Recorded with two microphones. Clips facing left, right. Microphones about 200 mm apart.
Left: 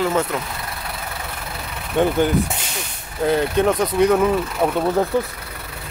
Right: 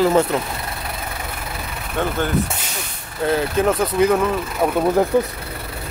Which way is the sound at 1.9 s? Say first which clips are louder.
Left 5 dB; 15° left (ahead or behind).